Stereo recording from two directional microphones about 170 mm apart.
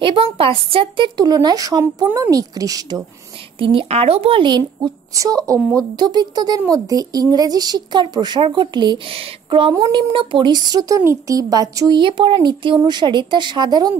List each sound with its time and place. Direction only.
0.0 s speech: 30° right (ahead or behind)